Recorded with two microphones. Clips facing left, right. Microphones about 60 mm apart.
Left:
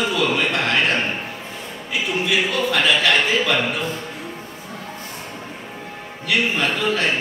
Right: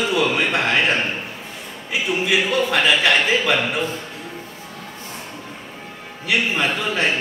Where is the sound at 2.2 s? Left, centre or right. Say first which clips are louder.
Right 2 dB; centre.